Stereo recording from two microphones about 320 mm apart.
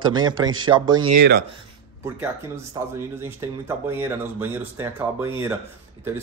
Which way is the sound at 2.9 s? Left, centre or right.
Centre.